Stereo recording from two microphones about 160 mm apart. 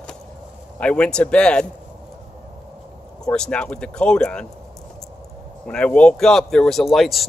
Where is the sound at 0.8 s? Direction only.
5° left (ahead or behind).